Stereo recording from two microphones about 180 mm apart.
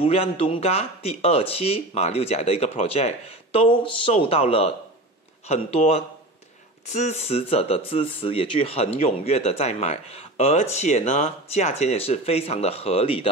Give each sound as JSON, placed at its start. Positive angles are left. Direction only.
{"t": 0.0, "sound": "speech", "side_deg": 30}